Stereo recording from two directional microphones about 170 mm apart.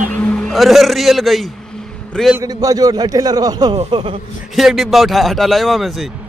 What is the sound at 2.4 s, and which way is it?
A man's voice, 20° right (ahead or behind).